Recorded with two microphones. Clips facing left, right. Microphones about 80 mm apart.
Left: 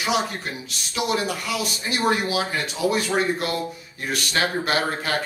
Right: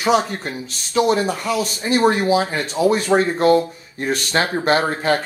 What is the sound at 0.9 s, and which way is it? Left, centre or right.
Speech, right.